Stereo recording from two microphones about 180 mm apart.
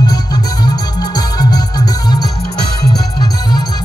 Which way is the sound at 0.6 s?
20° left (ahead or behind).